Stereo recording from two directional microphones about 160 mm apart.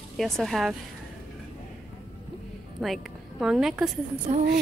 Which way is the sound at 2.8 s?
Centre (ahead or behind).